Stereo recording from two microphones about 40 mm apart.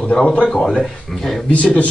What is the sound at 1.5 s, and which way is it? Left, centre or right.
Speech, left.